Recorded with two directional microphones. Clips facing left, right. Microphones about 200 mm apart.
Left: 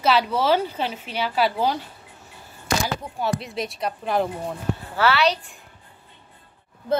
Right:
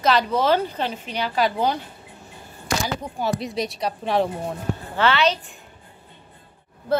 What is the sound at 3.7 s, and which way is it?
Speech, 30° right (ahead or behind).